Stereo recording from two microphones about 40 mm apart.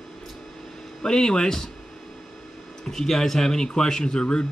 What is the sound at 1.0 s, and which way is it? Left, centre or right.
Speech, centre.